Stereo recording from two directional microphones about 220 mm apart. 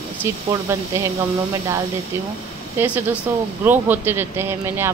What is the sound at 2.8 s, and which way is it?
Speech, 10° right (ahead or behind).